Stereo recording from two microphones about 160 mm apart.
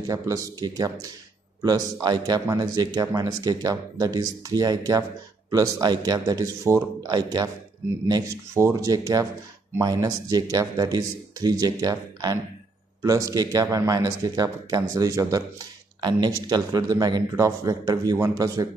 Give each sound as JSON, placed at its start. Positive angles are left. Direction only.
{"t": 0.0, "sound": "speech", "side_deg": -20}